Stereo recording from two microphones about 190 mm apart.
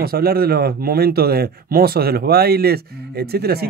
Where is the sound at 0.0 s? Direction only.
55° right (ahead or behind).